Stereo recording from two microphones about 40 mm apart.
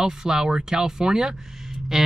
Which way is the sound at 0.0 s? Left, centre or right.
Centre.